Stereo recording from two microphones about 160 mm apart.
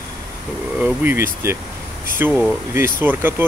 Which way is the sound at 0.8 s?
15° right (ahead or behind).